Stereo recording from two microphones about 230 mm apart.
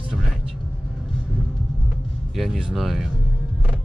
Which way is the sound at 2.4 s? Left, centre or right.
Centre.